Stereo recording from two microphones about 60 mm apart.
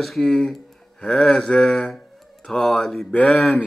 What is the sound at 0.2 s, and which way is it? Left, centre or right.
Mantra, centre.